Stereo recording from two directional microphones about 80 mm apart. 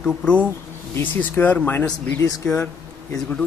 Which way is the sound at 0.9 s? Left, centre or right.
Left.